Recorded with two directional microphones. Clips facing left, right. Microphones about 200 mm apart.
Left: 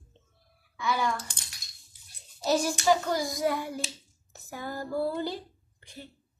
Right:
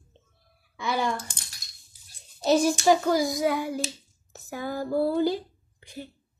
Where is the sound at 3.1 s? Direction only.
5° right (ahead or behind).